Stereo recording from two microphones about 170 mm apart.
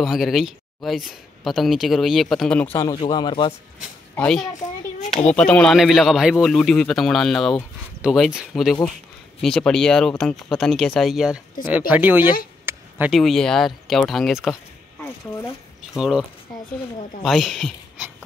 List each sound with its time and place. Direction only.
0.0 s speech: centre (ahead or behind)
2.9 s speech: 25° left (ahead or behind)
4.1 s a woman's voice: 5° left (ahead or behind)
4.9 s speech: 40° left (ahead or behind)
5.3 s speech: 5° left (ahead or behind); by 12.3 s 10° right (ahead or behind)
12.6 s a sound: 10° right (ahead or behind)
13.1 s speech: centre (ahead or behind)
15.9 s speech: 5° right (ahead or behind)